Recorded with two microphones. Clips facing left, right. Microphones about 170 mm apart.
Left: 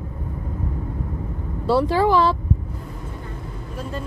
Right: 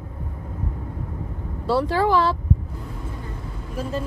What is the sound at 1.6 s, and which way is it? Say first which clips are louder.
Speech: left 2 dB; 15° left (ahead or behind).